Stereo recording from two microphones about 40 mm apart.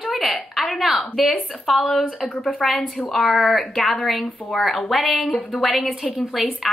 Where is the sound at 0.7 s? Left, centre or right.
Centre.